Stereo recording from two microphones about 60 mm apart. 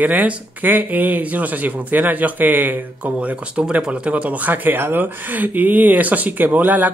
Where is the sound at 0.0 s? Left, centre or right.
Right.